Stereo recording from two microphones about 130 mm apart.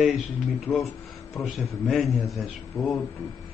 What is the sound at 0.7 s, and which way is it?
Speech, 20° left (ahead or behind).